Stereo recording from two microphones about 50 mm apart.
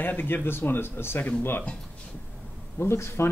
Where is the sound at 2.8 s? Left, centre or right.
Left.